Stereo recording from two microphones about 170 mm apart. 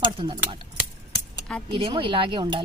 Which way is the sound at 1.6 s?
30° right (ahead or behind).